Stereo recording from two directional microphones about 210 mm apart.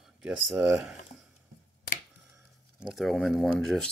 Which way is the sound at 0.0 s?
Centre (ahead or behind).